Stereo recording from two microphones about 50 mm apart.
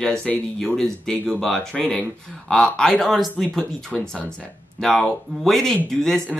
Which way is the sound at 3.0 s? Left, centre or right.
Centre.